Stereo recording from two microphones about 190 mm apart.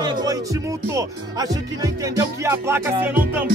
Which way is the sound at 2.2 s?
15° right (ahead or behind).